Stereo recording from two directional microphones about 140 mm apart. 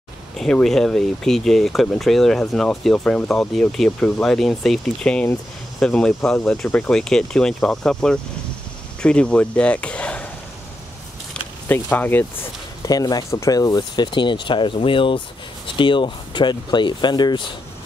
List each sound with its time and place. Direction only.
0.4 s speech: 5° left (ahead or behind)
11.7 s speech: 15° left (ahead or behind)
12.8 s speech: 25° left (ahead or behind)